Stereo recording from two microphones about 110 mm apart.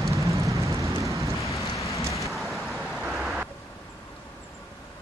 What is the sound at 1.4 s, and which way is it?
Rain, 30° left (ahead or behind).